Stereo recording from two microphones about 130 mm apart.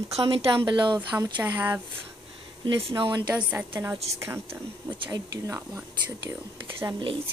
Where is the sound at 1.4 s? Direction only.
20° right (ahead or behind).